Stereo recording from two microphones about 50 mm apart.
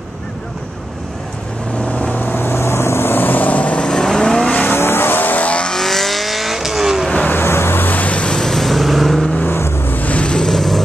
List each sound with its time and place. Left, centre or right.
2.0 s vehicle: left; by 4.5 s centre
4.7 s vehicle: left
5.7 s vehicle: centre
7.2 s vehicle: left
8.4 s vehicle: centre
9.5 s vehicle: left
9.9 s vehicle: left; by 10.8 s centre